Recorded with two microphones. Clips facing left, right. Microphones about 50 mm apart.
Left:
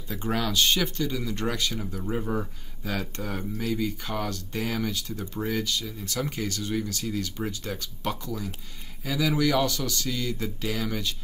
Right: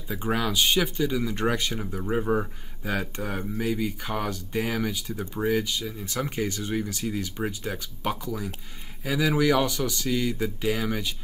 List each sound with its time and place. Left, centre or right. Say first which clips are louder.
0.1 s speech: right 1 dB; centre